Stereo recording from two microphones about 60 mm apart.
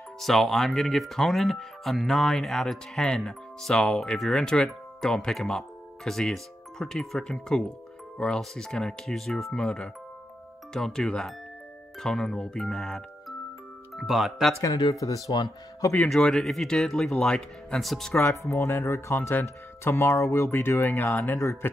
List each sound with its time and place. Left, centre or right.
0.2 s speech: centre
14.6 s speech: left
16.1 s speech: centre
17.8 s speech: centre
18.1 s speech: left